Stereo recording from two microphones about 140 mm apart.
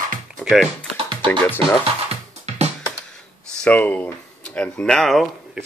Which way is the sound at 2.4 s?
50° right (ahead or behind).